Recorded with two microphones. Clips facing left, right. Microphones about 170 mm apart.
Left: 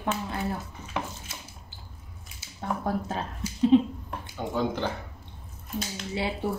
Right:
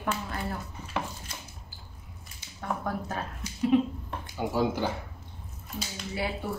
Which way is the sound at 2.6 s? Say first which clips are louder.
Left 2 dB; 25° left (ahead or behind).